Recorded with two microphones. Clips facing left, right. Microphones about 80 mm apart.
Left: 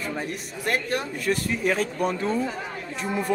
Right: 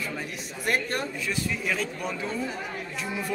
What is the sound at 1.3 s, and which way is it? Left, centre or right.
Speech, left.